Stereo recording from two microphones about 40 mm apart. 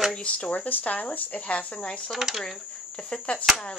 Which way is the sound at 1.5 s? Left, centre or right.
Left.